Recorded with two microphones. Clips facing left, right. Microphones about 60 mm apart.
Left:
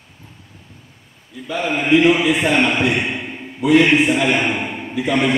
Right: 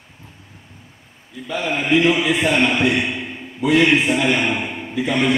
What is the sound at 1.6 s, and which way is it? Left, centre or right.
A man's voice, centre.